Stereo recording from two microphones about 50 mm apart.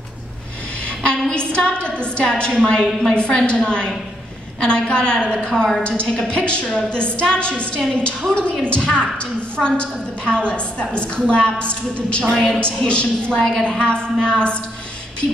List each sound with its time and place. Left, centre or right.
0.8 s a sound: left
1.5 s a woman's voice: left
2.5 s a woman's voice: centre
3.2 s a woman's voice: centre
5.6 s a woman's voice: centre
5.9 s a woman's voice: centre